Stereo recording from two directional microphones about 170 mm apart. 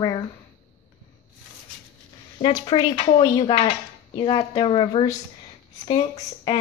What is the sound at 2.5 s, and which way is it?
Speech, 25° left (ahead or behind).